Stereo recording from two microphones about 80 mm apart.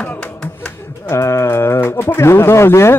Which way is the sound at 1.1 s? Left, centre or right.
Left.